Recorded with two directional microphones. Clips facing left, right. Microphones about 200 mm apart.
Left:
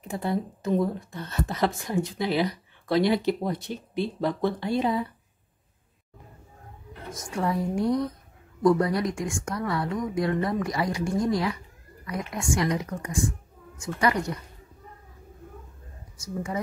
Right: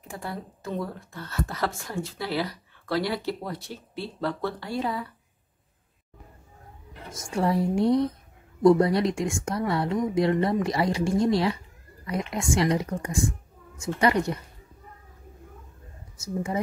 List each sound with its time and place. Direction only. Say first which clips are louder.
0.1 s speech: left 7 dB; 20° left (ahead or behind)
7.3 s speech: right 3 dB; 30° right (ahead or behind)